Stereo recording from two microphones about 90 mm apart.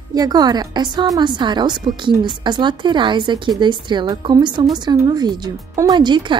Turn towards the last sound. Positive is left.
turn(degrees=-55)  # may be behind; listen again after turning